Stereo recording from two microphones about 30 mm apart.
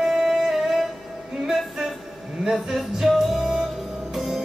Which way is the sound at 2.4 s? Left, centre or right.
Centre.